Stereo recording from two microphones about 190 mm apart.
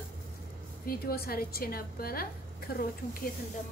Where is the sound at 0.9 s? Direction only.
55° left (ahead or behind).